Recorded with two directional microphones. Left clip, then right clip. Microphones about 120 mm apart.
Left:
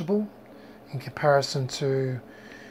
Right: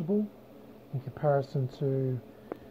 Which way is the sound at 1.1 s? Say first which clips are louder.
Left 7 dB; 30° left (ahead or behind).